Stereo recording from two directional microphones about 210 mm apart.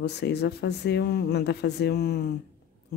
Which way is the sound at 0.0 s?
55° left (ahead or behind).